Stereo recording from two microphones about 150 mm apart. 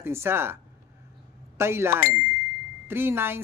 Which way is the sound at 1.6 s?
15° right (ahead or behind).